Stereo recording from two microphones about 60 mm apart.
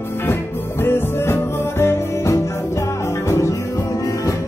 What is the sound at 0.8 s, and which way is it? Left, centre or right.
Music, left.